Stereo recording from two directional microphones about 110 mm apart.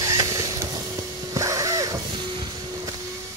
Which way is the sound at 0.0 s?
30° right (ahead or behind).